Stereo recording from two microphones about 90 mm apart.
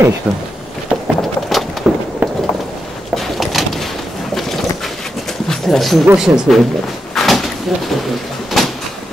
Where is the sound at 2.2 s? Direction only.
20° right (ahead or behind).